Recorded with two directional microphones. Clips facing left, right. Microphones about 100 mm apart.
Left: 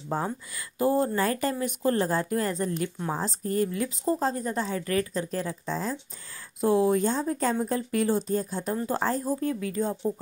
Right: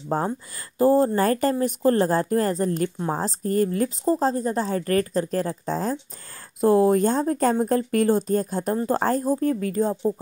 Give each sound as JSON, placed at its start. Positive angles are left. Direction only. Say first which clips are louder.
{"t": 0.1, "sound": "speech", "louder": "right 5 dB", "side_deg": -45}
{"t": 4.0, "sound": "speech", "louder": "right 4 dB", "side_deg": -30}